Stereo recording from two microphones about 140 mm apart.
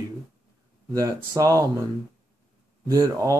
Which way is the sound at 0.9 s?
25° right (ahead or behind).